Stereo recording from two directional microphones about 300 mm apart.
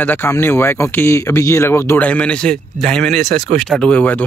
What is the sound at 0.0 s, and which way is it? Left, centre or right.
Speech, centre.